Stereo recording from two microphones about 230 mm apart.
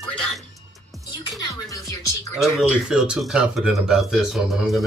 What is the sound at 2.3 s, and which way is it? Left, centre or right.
Speech, centre.